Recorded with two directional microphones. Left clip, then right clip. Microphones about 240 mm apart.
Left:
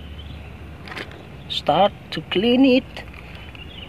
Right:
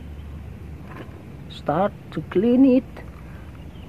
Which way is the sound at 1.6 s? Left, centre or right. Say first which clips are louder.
Left 5 dB; centre.